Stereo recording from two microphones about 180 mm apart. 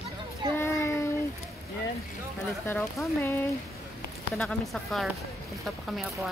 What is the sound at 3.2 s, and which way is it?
Speech, 15° left (ahead or behind).